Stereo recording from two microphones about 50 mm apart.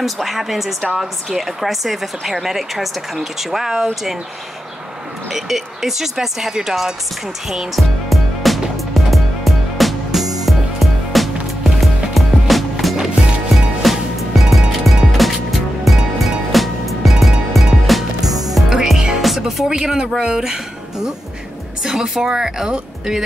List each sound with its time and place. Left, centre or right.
0.0 s speech: centre
5.3 s speech: centre
7.4 s music: centre
12.9 s music: centre
13.8 s music: centre
19.2 s speech: centre
21.8 s speech: centre